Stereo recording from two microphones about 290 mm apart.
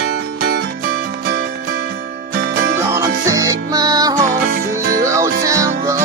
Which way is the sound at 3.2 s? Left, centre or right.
Centre.